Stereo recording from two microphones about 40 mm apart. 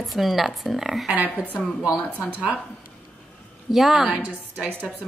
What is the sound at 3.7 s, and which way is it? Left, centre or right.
Speech, centre.